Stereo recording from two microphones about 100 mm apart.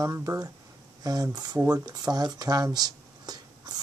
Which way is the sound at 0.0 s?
35° right (ahead or behind).